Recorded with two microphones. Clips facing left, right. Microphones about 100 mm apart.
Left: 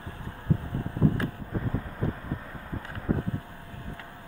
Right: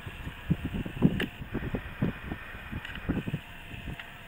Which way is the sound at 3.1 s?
25° left (ahead or behind).